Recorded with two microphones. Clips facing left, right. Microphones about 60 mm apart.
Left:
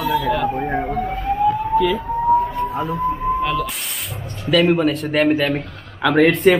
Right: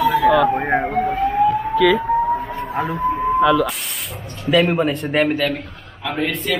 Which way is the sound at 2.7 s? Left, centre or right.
Right.